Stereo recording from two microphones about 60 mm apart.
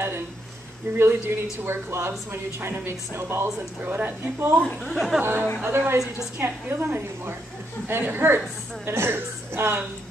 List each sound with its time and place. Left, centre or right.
0.9 s speech: right
4.9 s speech: centre
5.2 s speech: right